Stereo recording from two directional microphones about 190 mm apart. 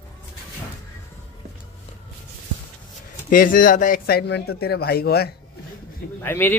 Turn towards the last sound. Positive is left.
turn(degrees=10)  # may be behind; listen again after turning